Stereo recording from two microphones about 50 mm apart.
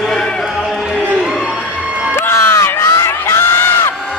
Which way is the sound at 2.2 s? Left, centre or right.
Left.